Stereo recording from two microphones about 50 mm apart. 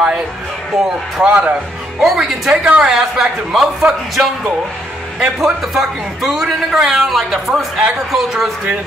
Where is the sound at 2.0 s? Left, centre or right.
Centre.